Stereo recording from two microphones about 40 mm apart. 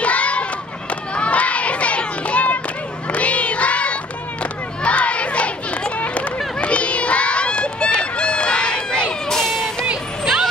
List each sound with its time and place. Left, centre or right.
0.0 s a sound: left
1.1 s crowd: left
9.4 s music: centre